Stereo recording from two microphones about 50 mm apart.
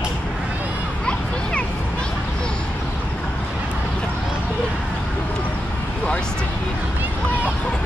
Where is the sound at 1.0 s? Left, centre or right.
Centre.